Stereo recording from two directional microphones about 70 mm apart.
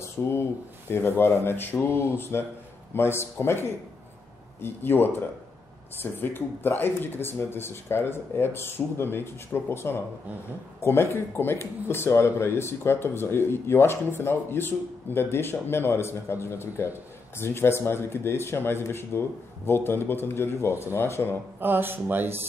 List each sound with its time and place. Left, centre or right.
0.0 s speech: left
21.5 s speech: right